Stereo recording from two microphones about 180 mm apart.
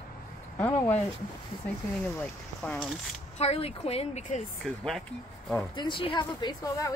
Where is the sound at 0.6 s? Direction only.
10° left (ahead or behind).